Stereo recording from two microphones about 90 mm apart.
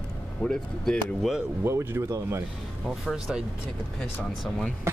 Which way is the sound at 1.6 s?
30° right (ahead or behind).